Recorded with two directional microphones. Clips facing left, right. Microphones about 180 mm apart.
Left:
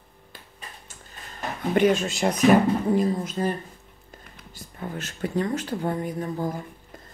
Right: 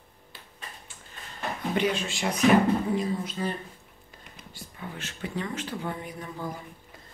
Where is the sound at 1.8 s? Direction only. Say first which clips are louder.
Left 8 dB; 45° left (ahead or behind).